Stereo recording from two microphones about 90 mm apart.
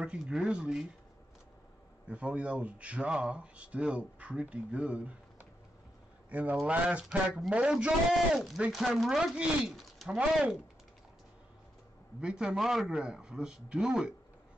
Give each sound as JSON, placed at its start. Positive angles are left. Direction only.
{"t": 0.0, "sound": "speech", "side_deg": -10}
{"t": 2.0, "sound": "speech", "side_deg": -15}
{"t": 12.2, "sound": "speech", "side_deg": -10}